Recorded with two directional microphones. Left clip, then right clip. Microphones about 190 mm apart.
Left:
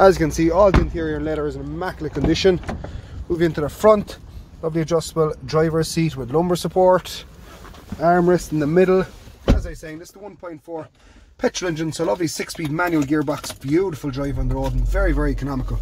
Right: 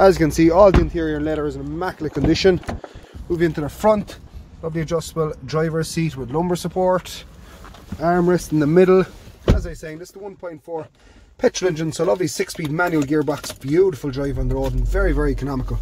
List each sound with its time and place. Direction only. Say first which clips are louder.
0.0 s speech: even; 15° right (ahead or behind)
0.3 s speech: right 3 dB; 30° right (ahead or behind)
3.3 s speech: even; centre (ahead or behind)
3.6 s speech: left 5 dB; 15° left (ahead or behind)
8.0 s speech: left 2 dB; 5° left (ahead or behind)
8.6 s speech: right 3 dB; 25° right (ahead or behind)
9.8 s speech: right 2 dB; 10° right (ahead or behind)
11.6 s speech: right 3 dB; 20° right (ahead or behind)